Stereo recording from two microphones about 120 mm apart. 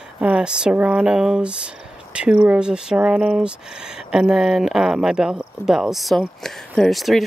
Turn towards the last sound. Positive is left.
turn(degrees=0)  # may be behind; listen again after turning